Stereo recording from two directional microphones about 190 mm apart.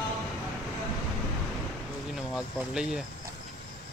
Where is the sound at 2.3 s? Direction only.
5° right (ahead or behind).